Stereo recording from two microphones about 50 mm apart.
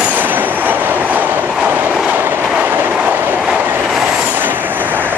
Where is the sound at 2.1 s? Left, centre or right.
Right.